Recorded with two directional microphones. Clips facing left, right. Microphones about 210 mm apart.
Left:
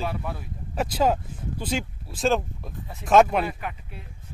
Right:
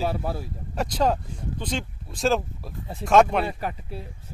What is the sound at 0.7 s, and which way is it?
Speech, 5° left (ahead or behind).